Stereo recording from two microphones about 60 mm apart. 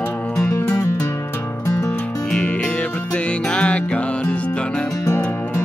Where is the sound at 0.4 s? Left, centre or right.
Left.